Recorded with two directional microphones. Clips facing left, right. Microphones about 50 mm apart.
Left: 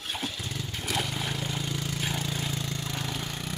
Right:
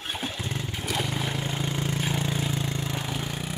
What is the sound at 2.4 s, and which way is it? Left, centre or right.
Vehicle, centre.